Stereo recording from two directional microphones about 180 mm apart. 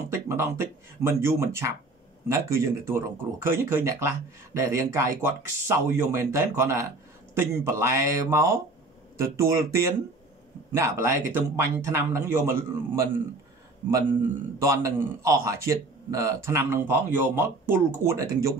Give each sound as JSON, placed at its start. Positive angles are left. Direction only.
{"t": 0.1, "sound": "a man's voice", "side_deg": -15}
{"t": 14.6, "sound": "a man's voice", "side_deg": -20}